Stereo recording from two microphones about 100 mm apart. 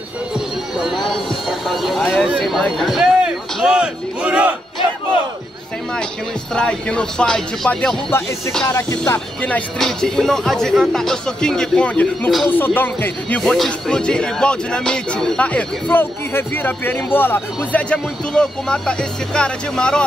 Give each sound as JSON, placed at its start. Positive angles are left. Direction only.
{"t": 0.3, "sound": "speech", "side_deg": -5}
{"t": 6.5, "sound": "speech", "side_deg": 10}
{"t": 8.6, "sound": "speech", "side_deg": 35}
{"t": 9.8, "sound": "speech", "side_deg": 5}
{"t": 13.4, "sound": "speech", "side_deg": 5}